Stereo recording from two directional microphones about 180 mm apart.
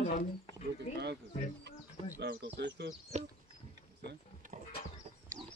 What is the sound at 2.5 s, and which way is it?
Speech, 70° right (ahead or behind).